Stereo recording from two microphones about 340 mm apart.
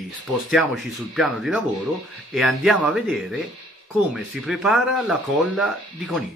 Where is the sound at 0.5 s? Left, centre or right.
Centre.